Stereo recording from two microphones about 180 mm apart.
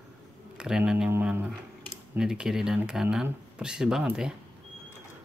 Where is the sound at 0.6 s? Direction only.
5° right (ahead or behind).